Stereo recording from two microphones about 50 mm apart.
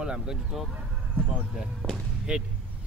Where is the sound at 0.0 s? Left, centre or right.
Centre.